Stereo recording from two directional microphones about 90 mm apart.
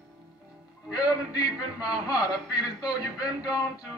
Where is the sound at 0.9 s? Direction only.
45° left (ahead or behind).